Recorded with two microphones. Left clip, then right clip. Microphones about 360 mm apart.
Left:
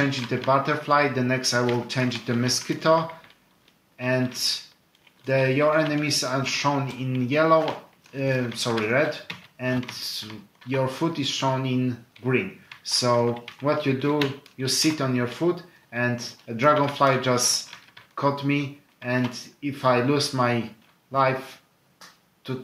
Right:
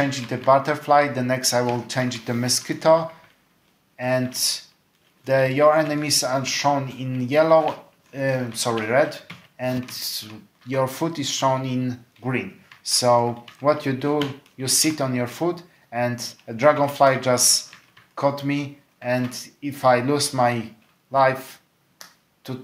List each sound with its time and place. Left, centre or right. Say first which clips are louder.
0.1 s speech: right 4 dB; right
4.0 s speech: right 2 dB; right
22.4 s speech: left 1 dB; right